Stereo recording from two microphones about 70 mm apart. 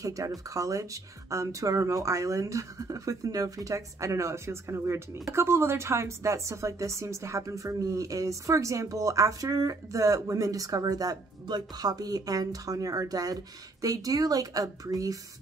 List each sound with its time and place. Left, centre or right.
0.0 s a woman's voice: right